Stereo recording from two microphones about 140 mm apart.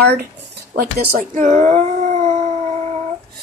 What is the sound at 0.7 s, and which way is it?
Speech, 90° right.